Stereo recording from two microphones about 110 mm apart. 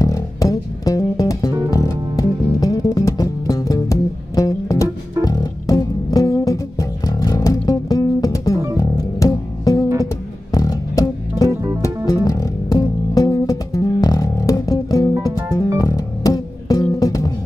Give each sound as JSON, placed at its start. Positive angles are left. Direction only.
{"t": 0.0, "sound": "music", "side_deg": 30}